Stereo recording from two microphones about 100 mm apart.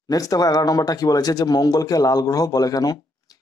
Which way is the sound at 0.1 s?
35° left (ahead or behind).